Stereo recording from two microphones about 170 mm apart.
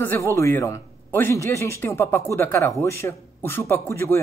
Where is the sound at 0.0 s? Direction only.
15° left (ahead or behind).